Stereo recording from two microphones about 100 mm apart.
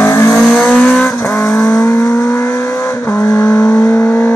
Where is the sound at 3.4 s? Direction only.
15° left (ahead or behind).